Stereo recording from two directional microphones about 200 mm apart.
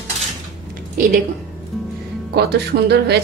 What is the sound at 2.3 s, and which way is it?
Speech, 55° right (ahead or behind).